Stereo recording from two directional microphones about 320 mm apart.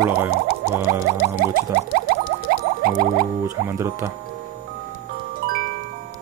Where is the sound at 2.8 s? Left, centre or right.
Right.